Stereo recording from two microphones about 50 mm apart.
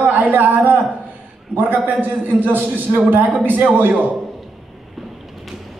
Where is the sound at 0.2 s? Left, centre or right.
Right.